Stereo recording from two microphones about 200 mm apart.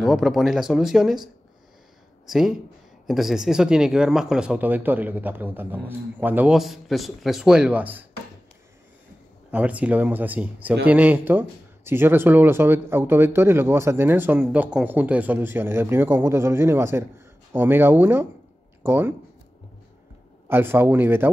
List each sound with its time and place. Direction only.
0.0 s speech: centre (ahead or behind)
2.2 s speech: centre (ahead or behind)
9.5 s speech: 5° right (ahead or behind)
20.4 s speech: 10° right (ahead or behind)